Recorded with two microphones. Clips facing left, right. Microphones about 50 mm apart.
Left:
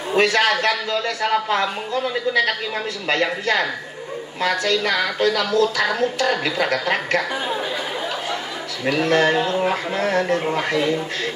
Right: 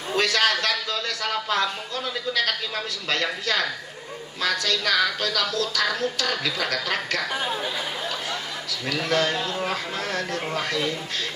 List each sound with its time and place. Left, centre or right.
0.1 s speech: left
3.1 s a woman's voice: left
8.8 s speech: left